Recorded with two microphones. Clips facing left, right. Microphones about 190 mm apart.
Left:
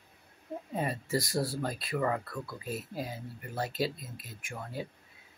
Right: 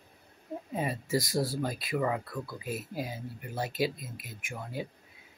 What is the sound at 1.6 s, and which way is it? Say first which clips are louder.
Speech: right 1 dB; 10° right (ahead or behind).